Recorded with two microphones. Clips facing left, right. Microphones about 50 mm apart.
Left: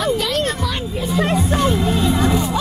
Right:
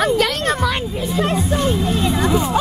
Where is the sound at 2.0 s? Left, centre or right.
Centre.